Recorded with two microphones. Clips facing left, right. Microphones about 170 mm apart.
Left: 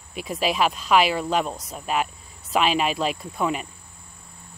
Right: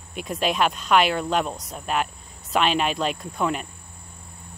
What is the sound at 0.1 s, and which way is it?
Speech, 5° left (ahead or behind).